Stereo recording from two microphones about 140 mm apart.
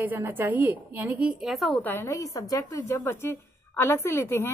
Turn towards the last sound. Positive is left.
turn(degrees=15)  # may be behind; listen again after turning